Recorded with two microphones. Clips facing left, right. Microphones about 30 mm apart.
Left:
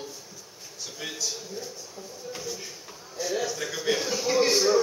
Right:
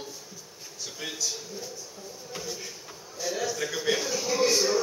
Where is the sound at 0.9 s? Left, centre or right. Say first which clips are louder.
Even; centre.